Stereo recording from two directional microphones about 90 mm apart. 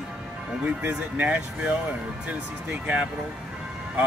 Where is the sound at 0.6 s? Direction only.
20° right (ahead or behind).